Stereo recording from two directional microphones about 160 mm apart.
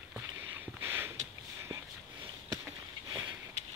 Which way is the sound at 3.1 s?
20° right (ahead or behind).